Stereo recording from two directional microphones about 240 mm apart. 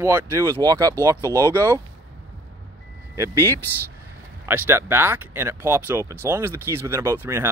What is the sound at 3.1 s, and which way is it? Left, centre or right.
Speech, centre.